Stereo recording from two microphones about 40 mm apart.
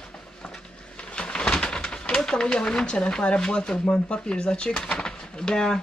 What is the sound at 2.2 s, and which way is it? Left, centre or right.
Speech, left.